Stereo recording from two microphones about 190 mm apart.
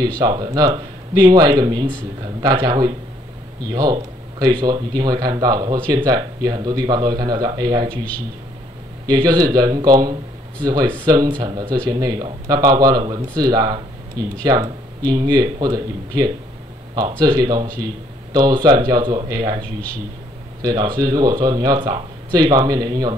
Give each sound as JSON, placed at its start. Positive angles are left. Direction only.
{"t": 0.2, "sound": "speech", "side_deg": -20}
{"t": 7.9, "sound": "a man's voice", "side_deg": 5}
{"t": 9.0, "sound": "speech", "side_deg": -20}
{"t": 20.6, "sound": "speech", "side_deg": -25}